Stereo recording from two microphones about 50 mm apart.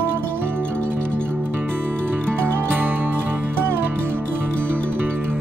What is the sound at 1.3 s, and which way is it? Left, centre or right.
Music, right.